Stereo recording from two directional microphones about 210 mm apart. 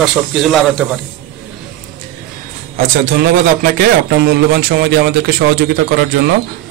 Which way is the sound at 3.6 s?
50° right (ahead or behind).